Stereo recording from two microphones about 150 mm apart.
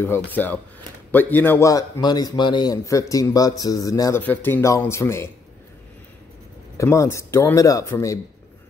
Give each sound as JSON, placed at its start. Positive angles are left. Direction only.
{"t": 0.0, "sound": "a man's voice", "side_deg": 15}
{"t": 4.2, "sound": "speech", "side_deg": 15}
{"t": 6.8, "sound": "a man's voice", "side_deg": 20}